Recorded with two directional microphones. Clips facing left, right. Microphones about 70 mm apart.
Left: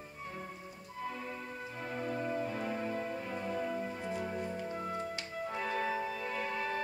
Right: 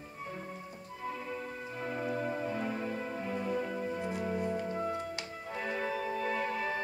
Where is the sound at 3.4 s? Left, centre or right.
Centre.